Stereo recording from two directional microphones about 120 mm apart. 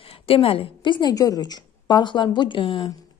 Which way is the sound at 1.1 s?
30° left (ahead or behind).